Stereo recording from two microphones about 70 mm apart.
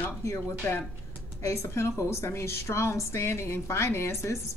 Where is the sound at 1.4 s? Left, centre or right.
Left.